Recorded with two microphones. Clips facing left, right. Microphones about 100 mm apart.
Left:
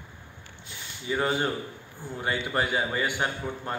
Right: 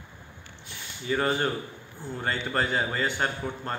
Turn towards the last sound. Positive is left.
turn(degrees=10)  # may be behind; listen again after turning